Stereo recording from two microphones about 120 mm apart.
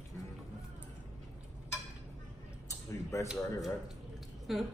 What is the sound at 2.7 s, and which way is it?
Speech, 25° left (ahead or behind).